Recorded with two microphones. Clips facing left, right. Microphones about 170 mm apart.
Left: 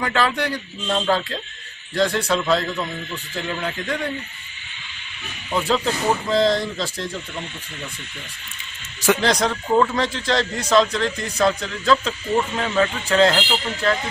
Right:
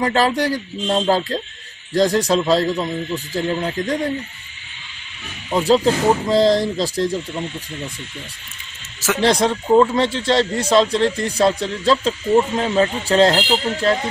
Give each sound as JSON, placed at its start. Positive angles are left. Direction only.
{"t": 0.0, "sound": "speech", "side_deg": -35}
{"t": 5.5, "sound": "speech", "side_deg": -40}
{"t": 9.2, "sound": "speech", "side_deg": -30}